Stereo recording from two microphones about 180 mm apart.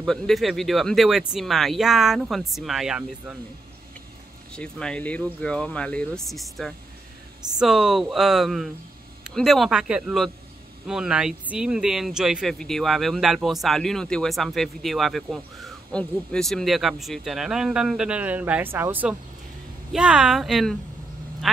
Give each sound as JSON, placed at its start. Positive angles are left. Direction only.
{"t": 0.0, "sound": "speech", "side_deg": 0}
{"t": 4.5, "sound": "speech", "side_deg": 5}